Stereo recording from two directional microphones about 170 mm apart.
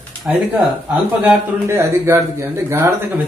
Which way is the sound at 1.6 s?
15° right (ahead or behind).